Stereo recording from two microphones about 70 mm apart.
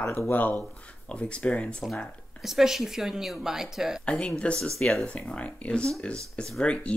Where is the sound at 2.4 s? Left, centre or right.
Centre.